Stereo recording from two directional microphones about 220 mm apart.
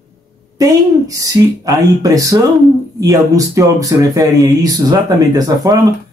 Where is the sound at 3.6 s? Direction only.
15° right (ahead or behind).